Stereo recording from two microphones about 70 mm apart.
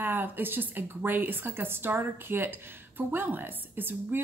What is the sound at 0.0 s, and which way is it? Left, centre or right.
A woman's voice, right.